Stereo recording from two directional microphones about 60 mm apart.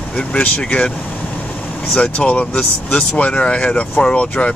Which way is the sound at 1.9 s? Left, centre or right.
Left.